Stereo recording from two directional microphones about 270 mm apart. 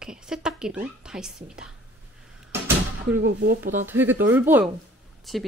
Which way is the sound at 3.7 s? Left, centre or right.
Centre.